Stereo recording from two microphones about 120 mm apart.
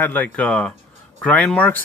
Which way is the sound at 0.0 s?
15° left (ahead or behind).